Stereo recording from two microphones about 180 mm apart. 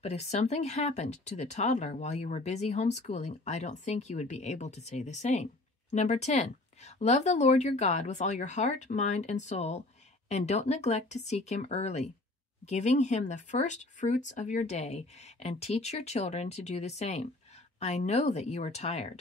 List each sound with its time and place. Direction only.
0.0 s speech: 40° left (ahead or behind)